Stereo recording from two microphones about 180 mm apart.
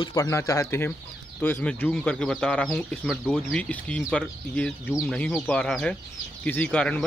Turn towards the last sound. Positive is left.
turn(degrees=5)  # may be behind; listen again after turning